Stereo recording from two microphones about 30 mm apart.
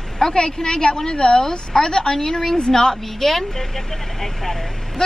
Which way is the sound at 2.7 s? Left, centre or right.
Centre.